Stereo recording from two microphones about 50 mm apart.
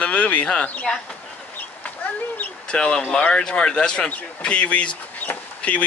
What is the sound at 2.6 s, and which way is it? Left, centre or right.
Speech, centre.